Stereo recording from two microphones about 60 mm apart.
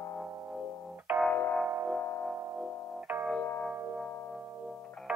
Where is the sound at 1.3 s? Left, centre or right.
Left.